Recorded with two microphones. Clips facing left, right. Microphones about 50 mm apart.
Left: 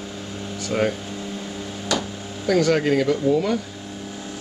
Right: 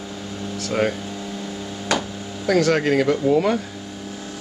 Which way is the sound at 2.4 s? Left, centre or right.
Centre.